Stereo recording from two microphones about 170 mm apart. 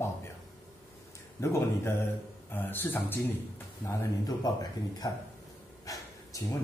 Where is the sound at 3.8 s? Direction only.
20° left (ahead or behind).